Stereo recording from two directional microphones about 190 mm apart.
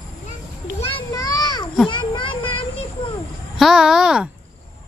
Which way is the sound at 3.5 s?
Centre (ahead or behind).